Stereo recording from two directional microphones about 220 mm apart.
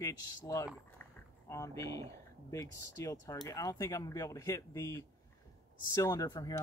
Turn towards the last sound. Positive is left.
turn(degrees=15)  # may be behind; listen again after turning